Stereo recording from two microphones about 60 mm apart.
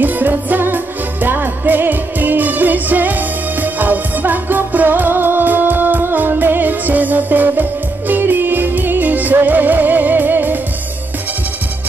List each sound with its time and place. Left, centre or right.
0.0 s music: right